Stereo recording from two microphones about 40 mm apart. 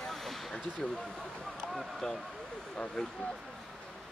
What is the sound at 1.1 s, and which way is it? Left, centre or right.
Speech, centre.